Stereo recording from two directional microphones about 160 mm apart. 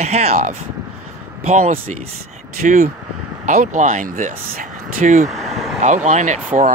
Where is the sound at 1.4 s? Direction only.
45° right (ahead or behind).